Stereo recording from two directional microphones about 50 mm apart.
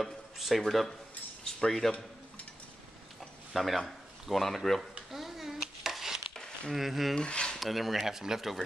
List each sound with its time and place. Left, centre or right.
0.0 s speech: centre
3.2 s a sound: centre
6.7 s speech: centre
7.2 s speech: centre
7.5 s speech: centre